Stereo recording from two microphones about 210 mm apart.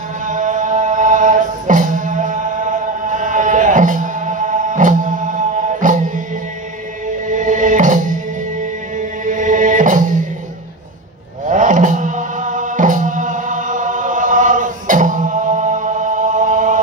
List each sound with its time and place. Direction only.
0.3 s music: 35° right (ahead or behind)
11.4 s music: 35° right (ahead or behind)